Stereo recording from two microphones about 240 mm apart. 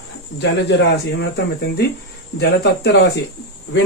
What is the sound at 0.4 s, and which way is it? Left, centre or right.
Speech, left.